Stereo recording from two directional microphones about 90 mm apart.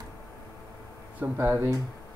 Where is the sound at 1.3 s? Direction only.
25° right (ahead or behind).